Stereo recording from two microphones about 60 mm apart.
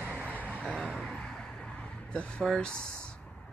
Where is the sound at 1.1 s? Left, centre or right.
Centre.